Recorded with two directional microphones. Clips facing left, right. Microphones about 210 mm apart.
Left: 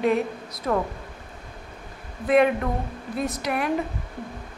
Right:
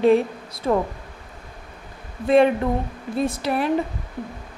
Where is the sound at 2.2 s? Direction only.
30° right (ahead or behind).